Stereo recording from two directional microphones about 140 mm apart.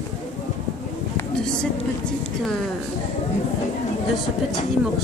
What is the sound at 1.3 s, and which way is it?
Speech, 5° left (ahead or behind).